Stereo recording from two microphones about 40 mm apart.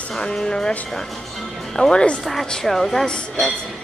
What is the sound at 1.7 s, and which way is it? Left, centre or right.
Speech, left.